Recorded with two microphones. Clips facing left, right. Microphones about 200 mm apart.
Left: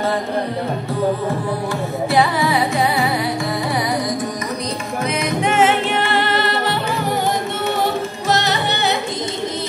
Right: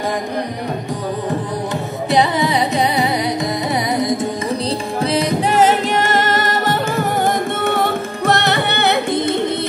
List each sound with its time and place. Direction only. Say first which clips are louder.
2.0 s carnatic music: right 1 dB; 20° right (ahead or behind)
5.0 s music: right 2 dB; 30° right (ahead or behind); by 9.0 s 60° right (ahead or behind)